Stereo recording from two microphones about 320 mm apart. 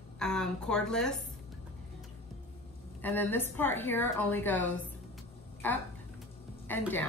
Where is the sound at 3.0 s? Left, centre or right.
Centre.